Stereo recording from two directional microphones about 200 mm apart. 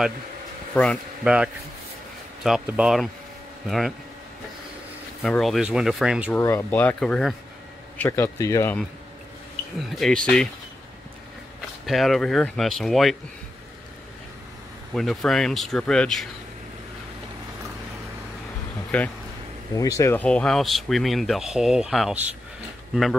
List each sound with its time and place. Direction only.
0.7 s speech: 5° left (ahead or behind)
2.4 s speech: 5° right (ahead or behind)
5.2 s speech: centre (ahead or behind)
6.3 s speech: 10° left (ahead or behind)
8.0 s speech: 15° left (ahead or behind)
9.8 s speech: centre (ahead or behind)
11.8 s speech: centre (ahead or behind)
15.0 s speech: centre (ahead or behind)
18.9 s speech: 5° left (ahead or behind)